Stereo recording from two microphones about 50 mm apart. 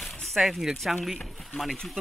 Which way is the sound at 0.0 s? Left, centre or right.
Centre.